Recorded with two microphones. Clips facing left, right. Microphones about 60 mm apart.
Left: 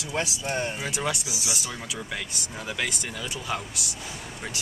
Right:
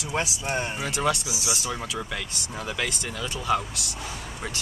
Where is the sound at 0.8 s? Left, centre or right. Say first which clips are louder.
Right 4 dB; centre.